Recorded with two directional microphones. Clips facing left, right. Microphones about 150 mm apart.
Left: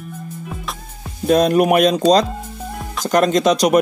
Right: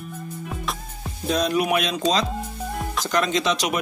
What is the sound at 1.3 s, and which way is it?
Speech, 55° left (ahead or behind).